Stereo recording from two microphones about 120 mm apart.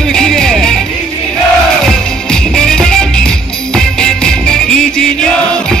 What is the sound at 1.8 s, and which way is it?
Music, 5° left (ahead or behind).